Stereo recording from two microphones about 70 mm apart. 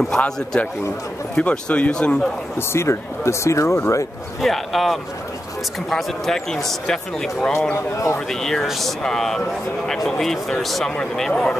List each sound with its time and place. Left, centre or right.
0.1 s speech: centre
2.7 s speech: left
4.4 s speech: centre
7.7 s speech: left
8.3 s speech: centre